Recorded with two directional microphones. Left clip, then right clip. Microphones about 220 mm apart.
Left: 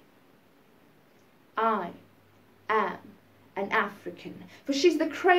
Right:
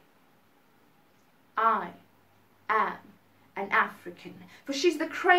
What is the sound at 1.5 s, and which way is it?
Speech, 15° right (ahead or behind).